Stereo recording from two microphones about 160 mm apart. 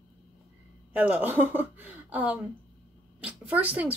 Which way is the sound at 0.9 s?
10° right (ahead or behind).